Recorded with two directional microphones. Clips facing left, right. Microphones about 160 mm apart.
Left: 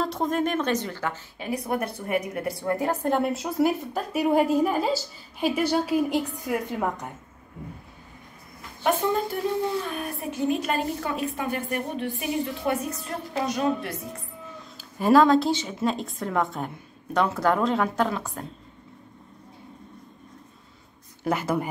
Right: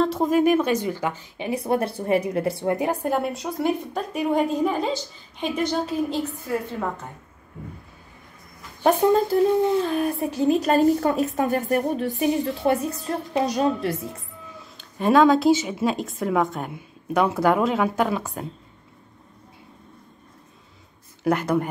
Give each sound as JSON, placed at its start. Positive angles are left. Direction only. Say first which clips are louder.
{"t": 0.0, "sound": "speech", "louder": "right 6 dB", "side_deg": -5}
{"t": 9.8, "sound": "a woman's voice", "louder": "right 8 dB", "side_deg": -35}
{"t": 14.8, "sound": "speech", "louder": "right 1 dB", "side_deg": 5}
{"t": 21.2, "sound": "speech", "louder": "right 4 dB", "side_deg": 5}